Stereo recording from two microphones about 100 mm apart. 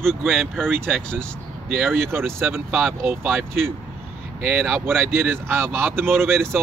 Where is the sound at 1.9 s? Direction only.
25° right (ahead or behind).